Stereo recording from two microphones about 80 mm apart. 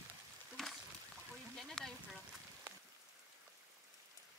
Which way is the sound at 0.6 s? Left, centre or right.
Centre.